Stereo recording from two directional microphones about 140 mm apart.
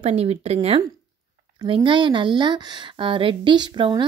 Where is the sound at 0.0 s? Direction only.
50° right (ahead or behind).